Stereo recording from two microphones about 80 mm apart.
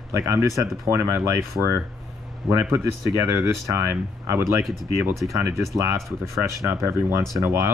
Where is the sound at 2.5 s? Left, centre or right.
Right.